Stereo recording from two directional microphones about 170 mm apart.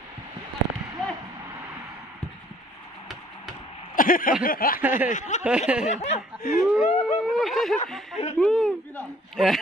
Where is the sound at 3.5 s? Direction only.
Centre (ahead or behind).